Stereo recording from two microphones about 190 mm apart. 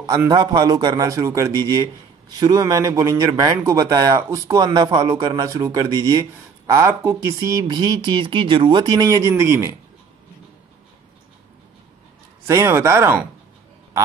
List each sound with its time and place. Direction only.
0.0 s speech: 20° right (ahead or behind)
12.4 s speech: 15° right (ahead or behind)